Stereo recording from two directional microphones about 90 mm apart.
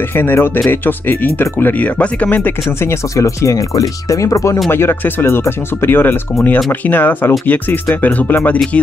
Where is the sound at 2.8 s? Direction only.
35° left (ahead or behind).